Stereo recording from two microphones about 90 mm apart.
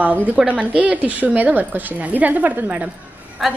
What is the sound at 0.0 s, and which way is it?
A woman's voice, 15° right (ahead or behind).